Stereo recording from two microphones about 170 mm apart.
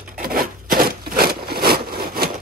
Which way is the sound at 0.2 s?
60° right (ahead or behind).